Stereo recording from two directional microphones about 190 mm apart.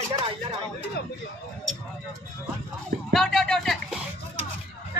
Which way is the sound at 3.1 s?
Centre (ahead or behind).